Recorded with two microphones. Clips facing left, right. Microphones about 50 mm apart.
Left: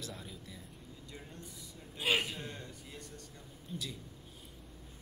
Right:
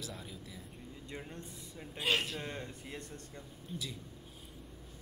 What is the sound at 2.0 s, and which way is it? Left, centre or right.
Speech, centre.